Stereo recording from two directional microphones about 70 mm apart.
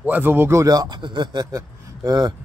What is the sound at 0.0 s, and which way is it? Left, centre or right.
Speech, right.